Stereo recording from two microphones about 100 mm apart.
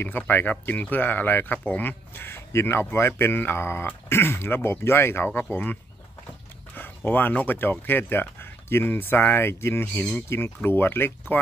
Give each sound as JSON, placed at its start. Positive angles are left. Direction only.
{"t": 0.0, "sound": "speech", "side_deg": 20}
{"t": 7.1, "sound": "speech", "side_deg": 20}